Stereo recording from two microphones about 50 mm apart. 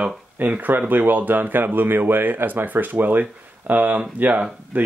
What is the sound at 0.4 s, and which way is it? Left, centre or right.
Speech, right.